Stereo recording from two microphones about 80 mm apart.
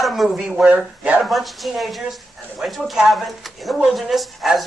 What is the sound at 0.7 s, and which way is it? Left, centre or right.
Speech, centre.